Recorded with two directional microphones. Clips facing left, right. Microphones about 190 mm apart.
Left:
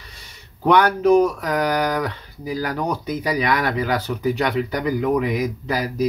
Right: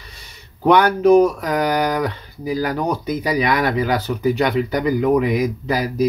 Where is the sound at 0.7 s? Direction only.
10° right (ahead or behind).